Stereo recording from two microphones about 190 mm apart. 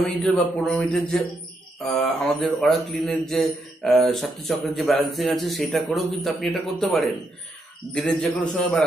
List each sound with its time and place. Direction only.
0.0 s a man's voice: 5° left (ahead or behind)
7.9 s a man's voice: 5° left (ahead or behind)